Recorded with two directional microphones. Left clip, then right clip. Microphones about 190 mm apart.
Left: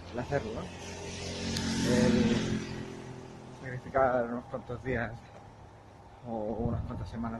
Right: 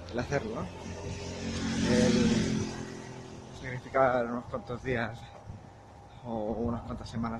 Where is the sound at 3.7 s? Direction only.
10° right (ahead or behind).